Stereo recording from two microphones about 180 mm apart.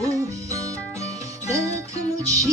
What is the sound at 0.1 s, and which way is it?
Music, 15° right (ahead or behind).